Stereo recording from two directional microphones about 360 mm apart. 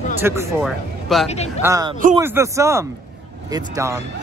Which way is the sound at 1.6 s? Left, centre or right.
Centre.